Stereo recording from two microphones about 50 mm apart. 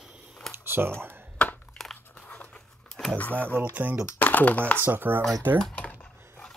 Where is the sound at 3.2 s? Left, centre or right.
Left.